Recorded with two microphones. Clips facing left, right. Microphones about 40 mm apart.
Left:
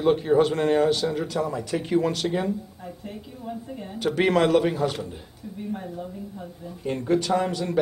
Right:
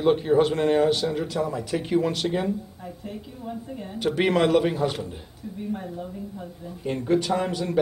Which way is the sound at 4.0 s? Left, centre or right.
Centre.